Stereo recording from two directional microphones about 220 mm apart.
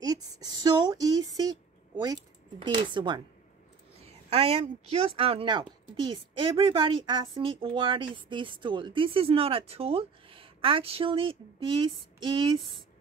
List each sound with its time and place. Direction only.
0.0 s a woman's voice: 15° right (ahead or behind)